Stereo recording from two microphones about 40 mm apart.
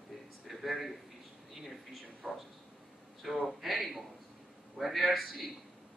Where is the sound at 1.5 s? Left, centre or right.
Centre.